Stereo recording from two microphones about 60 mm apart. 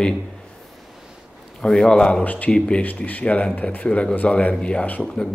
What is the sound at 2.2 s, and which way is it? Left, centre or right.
Speech, left.